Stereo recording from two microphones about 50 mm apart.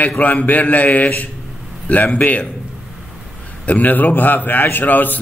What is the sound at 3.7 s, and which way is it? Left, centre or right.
A man's voice, left.